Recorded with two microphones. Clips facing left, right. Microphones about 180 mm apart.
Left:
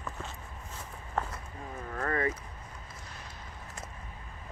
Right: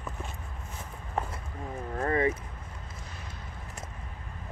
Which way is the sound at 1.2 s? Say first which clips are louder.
Right 1 dB; 15° right (ahead or behind).